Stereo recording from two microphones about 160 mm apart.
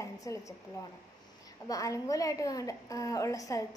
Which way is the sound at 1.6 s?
20° left (ahead or behind).